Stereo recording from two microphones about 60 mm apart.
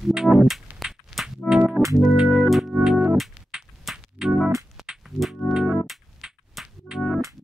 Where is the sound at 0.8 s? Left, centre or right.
Centre.